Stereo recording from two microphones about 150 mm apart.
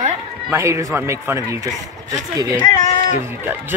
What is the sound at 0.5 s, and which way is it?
Speech, 20° right (ahead or behind).